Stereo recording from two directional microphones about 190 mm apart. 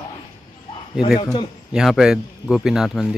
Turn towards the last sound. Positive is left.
turn(degrees=0)  # may be behind; listen again after turning